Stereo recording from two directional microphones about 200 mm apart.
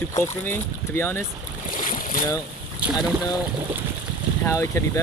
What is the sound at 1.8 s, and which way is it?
Boat, 45° left (ahead or behind).